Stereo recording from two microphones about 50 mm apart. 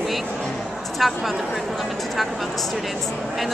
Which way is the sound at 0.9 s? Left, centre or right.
Centre.